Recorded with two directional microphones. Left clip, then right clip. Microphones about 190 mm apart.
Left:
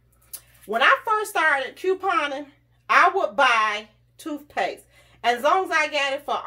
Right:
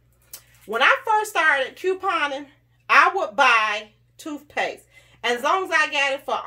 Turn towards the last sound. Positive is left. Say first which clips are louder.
# right 2 dB
turn(degrees=-10)  # may be behind; listen again after turning